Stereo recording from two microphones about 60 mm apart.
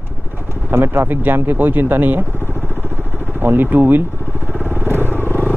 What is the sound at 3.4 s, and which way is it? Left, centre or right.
Speech, right.